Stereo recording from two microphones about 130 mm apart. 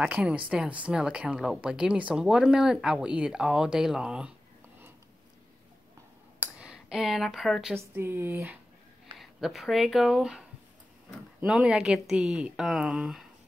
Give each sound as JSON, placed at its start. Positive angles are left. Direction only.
{"t": 0.0, "sound": "speech", "side_deg": -10}
{"t": 6.4, "sound": "speech", "side_deg": -5}
{"t": 7.7, "sound": "speech", "side_deg": -20}
{"t": 9.2, "sound": "speech", "side_deg": 0}
{"t": 11.4, "sound": "speech", "side_deg": -5}